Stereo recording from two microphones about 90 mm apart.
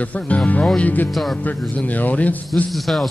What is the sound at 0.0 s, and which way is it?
A man's voice, 15° left (ahead or behind).